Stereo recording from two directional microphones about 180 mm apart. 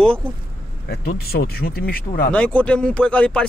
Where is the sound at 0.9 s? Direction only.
60° left (ahead or behind).